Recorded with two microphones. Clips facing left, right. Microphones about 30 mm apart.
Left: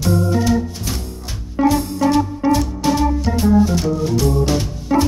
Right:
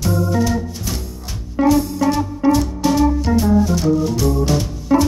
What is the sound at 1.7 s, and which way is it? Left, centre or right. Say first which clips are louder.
Music: right 1 dB; centre.